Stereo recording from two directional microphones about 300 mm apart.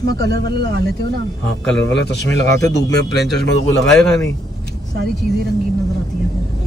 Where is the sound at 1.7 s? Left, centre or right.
Left.